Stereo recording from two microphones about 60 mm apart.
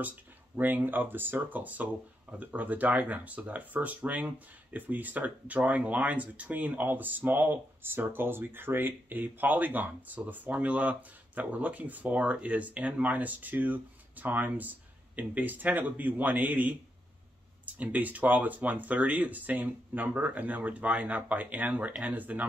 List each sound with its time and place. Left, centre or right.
0.6 s speech: right